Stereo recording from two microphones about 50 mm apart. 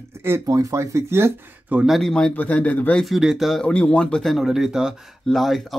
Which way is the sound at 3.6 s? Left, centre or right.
Left.